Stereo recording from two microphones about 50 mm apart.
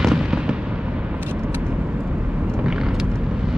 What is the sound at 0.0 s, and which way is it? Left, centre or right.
Fireworks, centre.